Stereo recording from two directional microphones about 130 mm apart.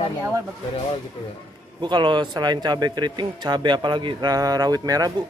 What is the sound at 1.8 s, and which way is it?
Speech, 35° right (ahead or behind).